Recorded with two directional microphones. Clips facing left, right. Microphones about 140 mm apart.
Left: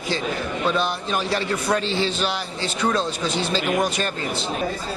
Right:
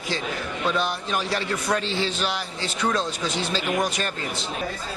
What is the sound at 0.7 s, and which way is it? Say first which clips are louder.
Speech: left 1 dB; 30° left (ahead or behind).